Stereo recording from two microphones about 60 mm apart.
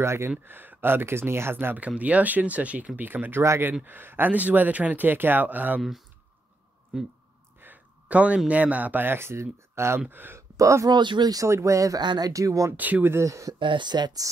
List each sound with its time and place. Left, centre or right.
0.0 s speech: right
0.5 s speech: right
2.0 s speech: right
5.8 s speech: centre
6.9 s speech: centre
7.6 s a sound: right
8.5 s speech: right
10.0 s speech: right
10.6 s speech: right
11.4 s speech: right
12.7 s speech: right
13.1 s speech: right
13.9 s speech: right